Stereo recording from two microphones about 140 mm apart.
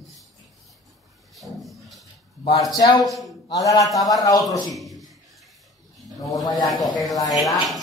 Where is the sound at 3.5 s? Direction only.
25° left (ahead or behind).